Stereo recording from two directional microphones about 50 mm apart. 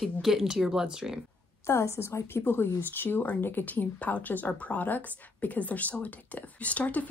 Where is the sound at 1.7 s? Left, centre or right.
Left.